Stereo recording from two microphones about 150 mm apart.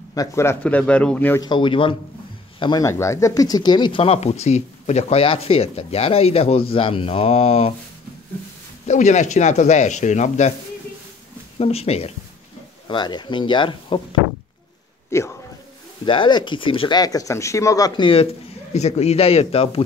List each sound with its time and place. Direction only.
0.1 s speech: 20° left (ahead or behind)
1.4 s speech: 30° left (ahead or behind)
2.8 s speech: 20° left (ahead or behind); by 7.7 s 40° left (ahead or behind)
8.8 s speech: 50° left (ahead or behind)
11.5 s speech: 40° left (ahead or behind)
12.8 s speech: 30° left (ahead or behind)
15.0 s speech: 20° left (ahead or behind)
16.1 s speech: 30° left (ahead or behind)